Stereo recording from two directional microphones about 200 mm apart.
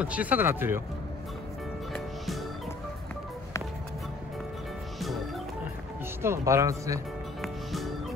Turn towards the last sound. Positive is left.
turn(degrees=0)  # may be behind; listen again after turning